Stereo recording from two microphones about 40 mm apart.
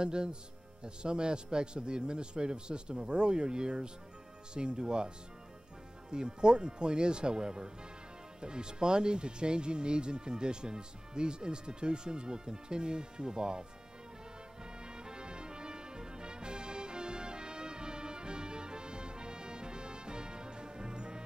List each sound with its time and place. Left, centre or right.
0.0 s speech: right
14.9 s music: right